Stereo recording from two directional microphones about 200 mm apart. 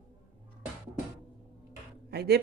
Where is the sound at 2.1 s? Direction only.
55° right (ahead or behind).